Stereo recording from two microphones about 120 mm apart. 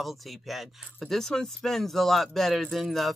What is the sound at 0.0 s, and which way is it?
Speech, centre (ahead or behind).